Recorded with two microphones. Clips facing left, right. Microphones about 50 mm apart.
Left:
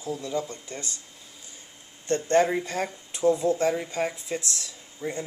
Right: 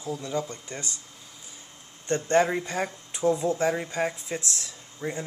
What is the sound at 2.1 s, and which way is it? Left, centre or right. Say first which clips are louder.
Speech: left 1 dB; centre.